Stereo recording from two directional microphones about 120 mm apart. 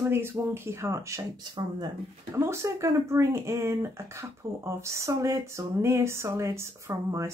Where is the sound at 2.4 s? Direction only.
25° right (ahead or behind).